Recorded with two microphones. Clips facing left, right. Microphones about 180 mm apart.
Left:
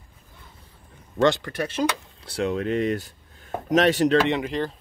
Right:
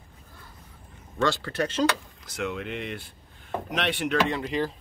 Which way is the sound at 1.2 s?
15° left (ahead or behind).